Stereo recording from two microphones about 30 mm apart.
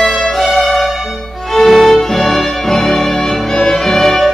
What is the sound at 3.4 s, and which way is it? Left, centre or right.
Music, centre.